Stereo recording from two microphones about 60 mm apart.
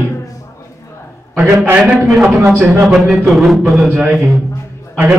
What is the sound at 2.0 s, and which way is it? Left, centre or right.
Speech, centre.